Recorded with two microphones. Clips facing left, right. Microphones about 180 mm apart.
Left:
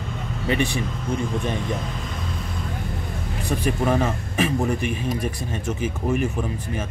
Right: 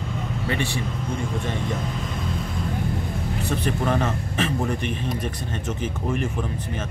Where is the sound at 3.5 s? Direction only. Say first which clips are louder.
Left 3 dB; 10° left (ahead or behind).